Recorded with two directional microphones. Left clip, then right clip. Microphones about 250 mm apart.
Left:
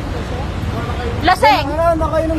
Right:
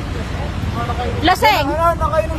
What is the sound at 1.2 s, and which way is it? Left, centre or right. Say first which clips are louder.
Speech: left 2 dB; centre.